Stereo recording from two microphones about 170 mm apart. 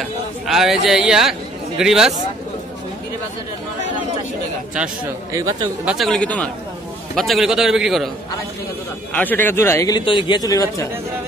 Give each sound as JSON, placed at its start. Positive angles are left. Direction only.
{"t": 0.0, "sound": "a man's voice", "side_deg": 0}
{"t": 5.3, "sound": "speech", "side_deg": -25}
{"t": 5.9, "sound": "a man's voice", "side_deg": 0}
{"t": 9.1, "sound": "a man's voice", "side_deg": 10}
{"t": 9.9, "sound": "speech", "side_deg": 30}